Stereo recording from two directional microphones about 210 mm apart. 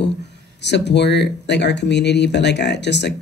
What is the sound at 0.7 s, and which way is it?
Speech, 55° left (ahead or behind).